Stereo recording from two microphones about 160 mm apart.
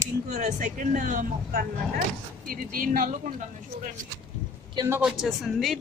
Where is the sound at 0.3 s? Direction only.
45° right (ahead or behind).